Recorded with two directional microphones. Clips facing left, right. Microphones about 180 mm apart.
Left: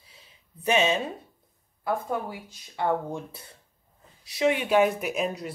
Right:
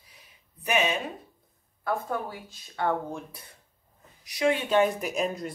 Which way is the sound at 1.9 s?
15° left (ahead or behind).